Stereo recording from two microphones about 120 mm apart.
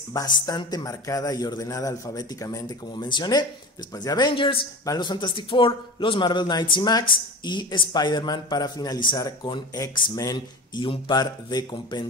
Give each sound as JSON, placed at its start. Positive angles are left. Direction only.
{"t": 0.1, "sound": "a man's voice", "side_deg": 30}